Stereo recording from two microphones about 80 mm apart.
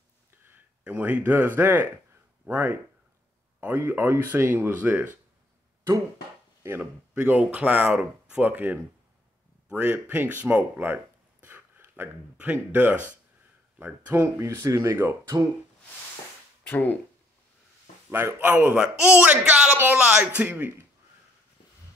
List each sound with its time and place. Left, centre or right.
0.8 s speech: centre
3.8 s speech: right
6.6 s speech: right
7.2 s speech: centre
11.4 s a sound: right
12.7 s speech: right
14.1 s speech: right
16.6 s speech: left
18.1 s speech: right
20.4 s speech: right